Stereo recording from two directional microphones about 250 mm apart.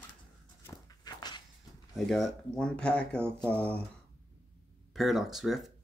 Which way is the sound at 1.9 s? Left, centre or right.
Centre.